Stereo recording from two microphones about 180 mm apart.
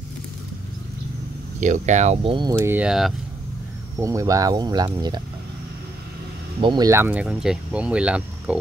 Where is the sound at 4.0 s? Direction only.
20° right (ahead or behind).